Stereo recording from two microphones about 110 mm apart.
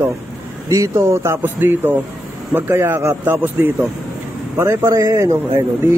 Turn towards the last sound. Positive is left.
turn(degrees=-25)  # may be behind; listen again after turning